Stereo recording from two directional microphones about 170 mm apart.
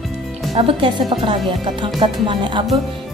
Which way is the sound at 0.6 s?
30° right (ahead or behind).